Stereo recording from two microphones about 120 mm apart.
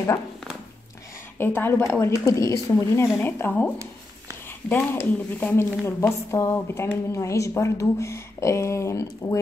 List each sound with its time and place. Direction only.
1.4 s speech: 20° left (ahead or behind)
3.7 s a sound: 25° right (ahead or behind)
4.6 s speech: 15° left (ahead or behind)